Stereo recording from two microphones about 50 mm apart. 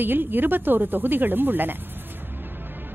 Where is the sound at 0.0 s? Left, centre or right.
Right.